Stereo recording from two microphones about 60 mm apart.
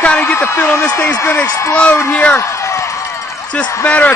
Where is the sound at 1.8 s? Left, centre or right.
Left.